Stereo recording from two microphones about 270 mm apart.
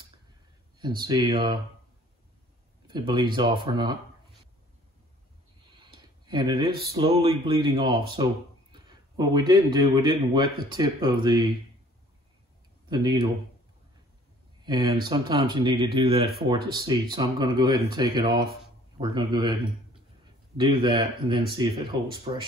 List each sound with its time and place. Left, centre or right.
0.7 s speech: centre
2.9 s speech: centre
5.8 s a sound: centre
6.9 s speech: right
12.8 s speech: centre
14.6 s speech: centre
20.5 s speech: centre